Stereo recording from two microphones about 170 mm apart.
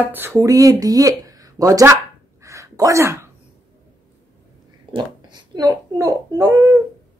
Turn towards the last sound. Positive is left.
turn(degrees=-20)  # may be behind; listen again after turning